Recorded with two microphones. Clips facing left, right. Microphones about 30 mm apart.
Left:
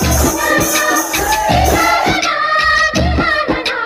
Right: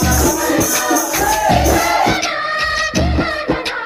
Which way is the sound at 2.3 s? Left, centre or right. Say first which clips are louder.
Left 5 dB; left.